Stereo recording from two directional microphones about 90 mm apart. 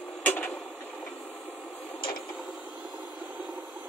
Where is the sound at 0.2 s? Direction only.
20° left (ahead or behind).